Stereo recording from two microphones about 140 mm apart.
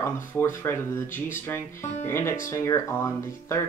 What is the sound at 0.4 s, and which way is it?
Speech, 20° left (ahead or behind).